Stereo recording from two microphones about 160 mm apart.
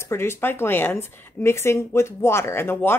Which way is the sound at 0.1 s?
15° left (ahead or behind).